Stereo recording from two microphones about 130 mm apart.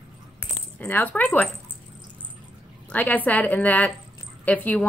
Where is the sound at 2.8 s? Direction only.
10° left (ahead or behind).